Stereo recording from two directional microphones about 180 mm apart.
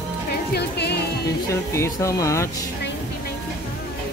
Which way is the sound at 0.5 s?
65° left (ahead or behind).